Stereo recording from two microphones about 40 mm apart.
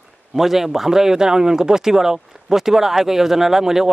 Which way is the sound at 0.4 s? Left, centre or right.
Centre.